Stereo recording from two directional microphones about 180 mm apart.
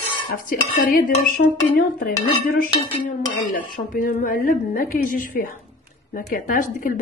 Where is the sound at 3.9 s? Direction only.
50° left (ahead or behind).